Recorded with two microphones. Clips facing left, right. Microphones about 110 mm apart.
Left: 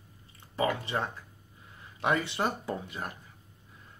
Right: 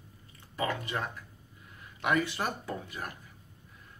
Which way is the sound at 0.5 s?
30° left (ahead or behind).